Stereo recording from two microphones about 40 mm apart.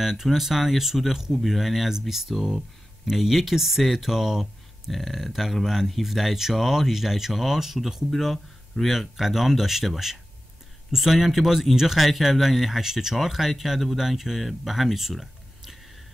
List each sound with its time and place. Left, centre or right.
0.0 s speech: centre